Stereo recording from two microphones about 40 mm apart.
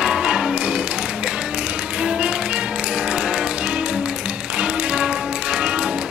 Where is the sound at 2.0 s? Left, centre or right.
Centre.